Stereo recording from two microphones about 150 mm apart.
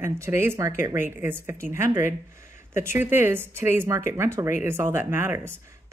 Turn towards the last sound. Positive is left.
turn(degrees=-15)  # may be behind; listen again after turning